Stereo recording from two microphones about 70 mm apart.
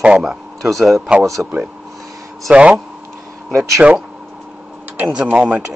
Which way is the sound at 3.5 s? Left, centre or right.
Right.